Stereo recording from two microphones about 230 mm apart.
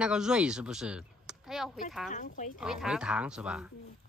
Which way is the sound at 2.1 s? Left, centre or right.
Left.